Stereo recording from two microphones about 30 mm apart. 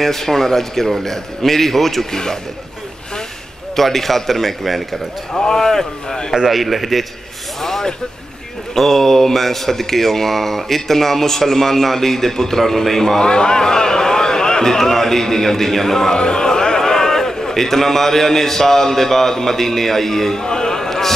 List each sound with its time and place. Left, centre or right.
0.0 s speech: centre
3.7 s speech: centre
5.3 s speech: left
5.6 s speech: centre
6.5 s a man's voice: centre
8.7 s speech: centre
13.2 s speech: left; by 16.1 s centre
16.1 s a man's voice: left
20.4 s a sound: left